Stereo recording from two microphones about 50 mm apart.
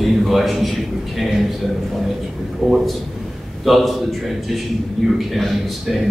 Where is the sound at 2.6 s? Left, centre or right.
Centre.